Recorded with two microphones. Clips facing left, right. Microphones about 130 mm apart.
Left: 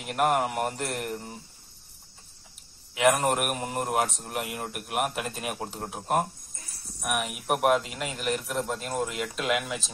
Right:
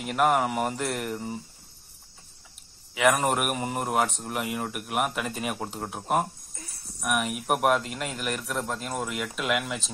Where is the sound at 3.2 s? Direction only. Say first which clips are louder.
Right 1 dB; centre (ahead or behind).